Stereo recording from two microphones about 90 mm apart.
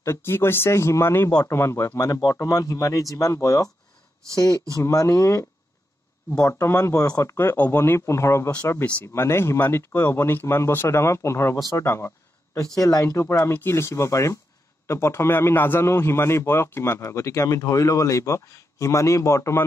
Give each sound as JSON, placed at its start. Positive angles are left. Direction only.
{"t": 0.0, "sound": "speech", "side_deg": 30}
{"t": 2.0, "sound": "a man's voice", "side_deg": 40}
{"t": 12.5, "sound": "a man's voice", "side_deg": 40}